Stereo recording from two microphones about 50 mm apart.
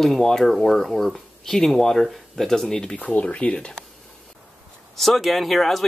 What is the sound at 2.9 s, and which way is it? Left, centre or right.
Speech, left.